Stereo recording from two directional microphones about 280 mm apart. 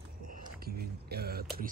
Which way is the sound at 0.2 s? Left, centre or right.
Right.